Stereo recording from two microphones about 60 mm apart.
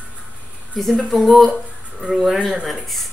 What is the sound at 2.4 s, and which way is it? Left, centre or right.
Speech, centre.